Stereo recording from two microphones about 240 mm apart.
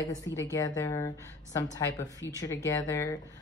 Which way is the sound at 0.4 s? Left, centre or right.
Centre.